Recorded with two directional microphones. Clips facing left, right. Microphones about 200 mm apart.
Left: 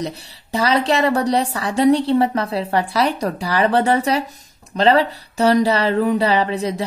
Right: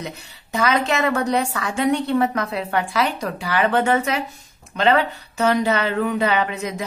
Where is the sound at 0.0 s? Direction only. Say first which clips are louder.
Left 6 dB; 35° left (ahead or behind).